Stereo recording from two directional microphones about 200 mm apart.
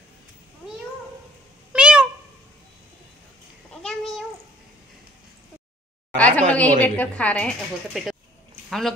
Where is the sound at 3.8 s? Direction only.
Centre (ahead or behind).